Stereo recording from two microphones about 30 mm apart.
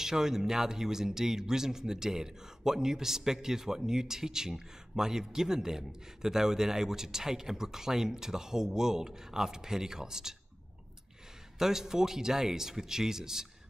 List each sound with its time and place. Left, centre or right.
0.0 s speech: centre
11.5 s speech: centre